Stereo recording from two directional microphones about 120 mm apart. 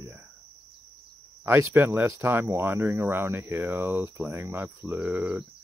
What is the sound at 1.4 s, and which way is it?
Speech, 20° right (ahead or behind).